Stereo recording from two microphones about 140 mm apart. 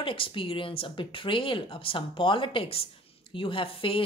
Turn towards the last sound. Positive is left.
turn(degrees=40)  # may be behind; listen again after turning